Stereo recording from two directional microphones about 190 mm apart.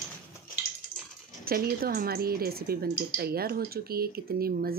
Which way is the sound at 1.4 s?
50° right (ahead or behind).